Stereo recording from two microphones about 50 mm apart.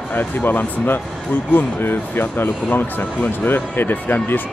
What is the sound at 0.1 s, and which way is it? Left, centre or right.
Speech, left.